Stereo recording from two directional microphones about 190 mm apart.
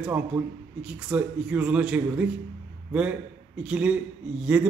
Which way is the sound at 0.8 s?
5° right (ahead or behind).